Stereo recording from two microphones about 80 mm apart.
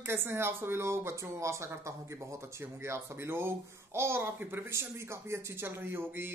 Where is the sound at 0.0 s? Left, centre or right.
Right.